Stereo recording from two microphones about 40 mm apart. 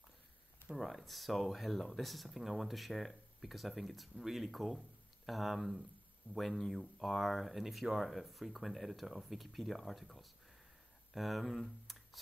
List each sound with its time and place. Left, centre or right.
0.7 s speech: centre